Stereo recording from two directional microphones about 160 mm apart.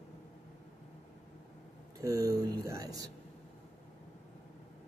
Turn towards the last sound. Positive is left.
turn(degrees=-20)  # may be behind; listen again after turning